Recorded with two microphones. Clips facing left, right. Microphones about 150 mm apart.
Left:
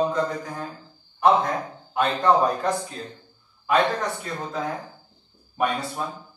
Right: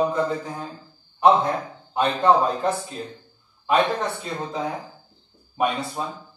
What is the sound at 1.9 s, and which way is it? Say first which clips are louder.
Speech: right 1 dB; 20° right (ahead or behind).